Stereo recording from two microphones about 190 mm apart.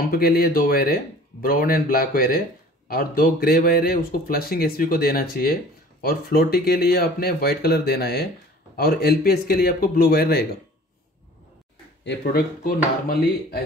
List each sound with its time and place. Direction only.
0.0 s speech: 55° left (ahead or behind)
12.0 s speech: 60° left (ahead or behind)